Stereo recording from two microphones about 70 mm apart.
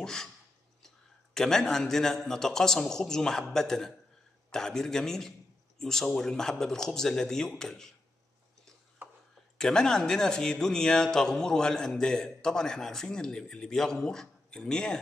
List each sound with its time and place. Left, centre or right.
0.0 s a sound: centre
0.8 s speech: centre
9.6 s speech: centre